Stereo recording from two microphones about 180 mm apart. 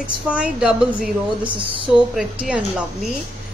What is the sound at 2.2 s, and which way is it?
Speech, 5° right (ahead or behind).